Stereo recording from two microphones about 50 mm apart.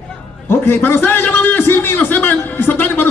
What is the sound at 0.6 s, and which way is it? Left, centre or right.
A man's voice, left.